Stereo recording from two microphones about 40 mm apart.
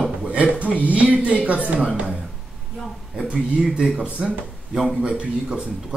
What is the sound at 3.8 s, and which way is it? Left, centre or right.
Speech, right.